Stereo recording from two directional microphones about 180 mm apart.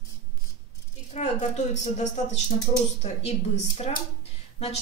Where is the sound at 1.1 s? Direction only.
40° left (ahead or behind).